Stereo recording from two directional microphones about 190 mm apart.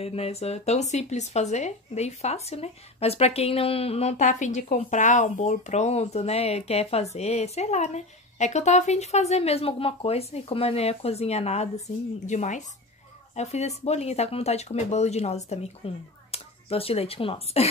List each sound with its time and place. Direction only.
0.0 s speech: 30° left (ahead or behind)